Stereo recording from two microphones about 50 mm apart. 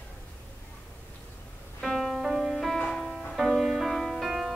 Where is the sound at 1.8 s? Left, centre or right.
Centre.